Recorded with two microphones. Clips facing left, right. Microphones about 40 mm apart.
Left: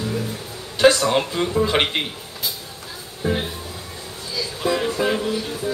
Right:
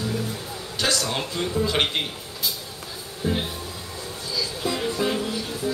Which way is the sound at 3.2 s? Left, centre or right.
Centre.